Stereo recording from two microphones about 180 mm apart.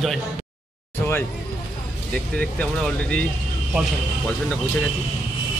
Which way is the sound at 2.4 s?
5° left (ahead or behind).